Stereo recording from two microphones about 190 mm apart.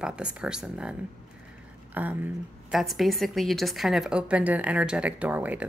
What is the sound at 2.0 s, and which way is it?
A woman's voice, 10° right (ahead or behind).